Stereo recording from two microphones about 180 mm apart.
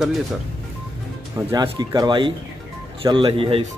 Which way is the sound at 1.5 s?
20° right (ahead or behind).